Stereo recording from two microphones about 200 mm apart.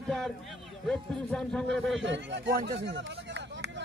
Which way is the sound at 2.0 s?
65° right (ahead or behind).